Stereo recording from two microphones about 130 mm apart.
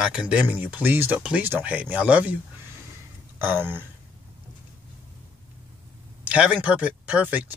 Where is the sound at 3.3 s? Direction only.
15° right (ahead or behind).